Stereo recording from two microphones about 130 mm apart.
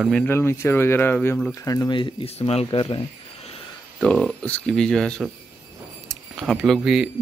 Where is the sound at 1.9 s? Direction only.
40° left (ahead or behind).